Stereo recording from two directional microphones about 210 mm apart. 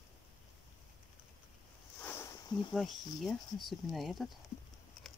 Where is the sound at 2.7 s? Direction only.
Centre (ahead or behind).